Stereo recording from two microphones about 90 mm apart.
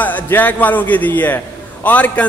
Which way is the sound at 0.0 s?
20° left (ahead or behind).